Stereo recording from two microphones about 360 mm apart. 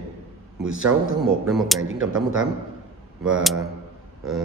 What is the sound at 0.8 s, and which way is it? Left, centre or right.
Speech, centre.